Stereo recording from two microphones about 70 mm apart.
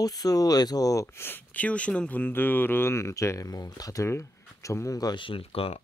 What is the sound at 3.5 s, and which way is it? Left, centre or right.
Speech, left.